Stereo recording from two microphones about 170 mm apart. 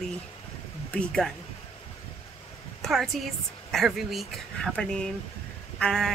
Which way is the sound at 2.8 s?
Centre (ahead or behind).